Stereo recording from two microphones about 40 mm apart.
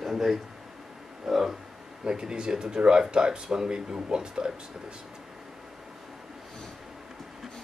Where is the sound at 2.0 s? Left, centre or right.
Centre.